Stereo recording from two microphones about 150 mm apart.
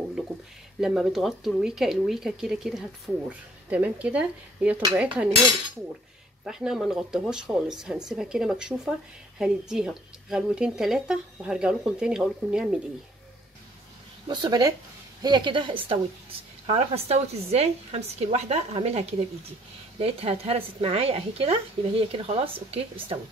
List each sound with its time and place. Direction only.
0.7 s speech: 5° right (ahead or behind)
4.9 s cutlery: 10° right (ahead or behind)
6.4 s speech: 5° right (ahead or behind)
14.2 s a woman's voice: 30° right (ahead or behind)